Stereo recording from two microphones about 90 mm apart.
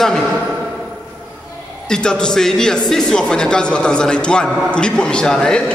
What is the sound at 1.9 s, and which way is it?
Speech, 10° left (ahead or behind).